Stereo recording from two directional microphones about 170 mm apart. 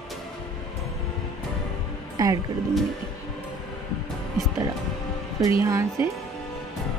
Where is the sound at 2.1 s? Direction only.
20° right (ahead or behind).